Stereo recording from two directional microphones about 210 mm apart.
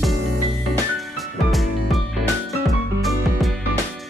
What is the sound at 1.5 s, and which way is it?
Music, centre (ahead or behind).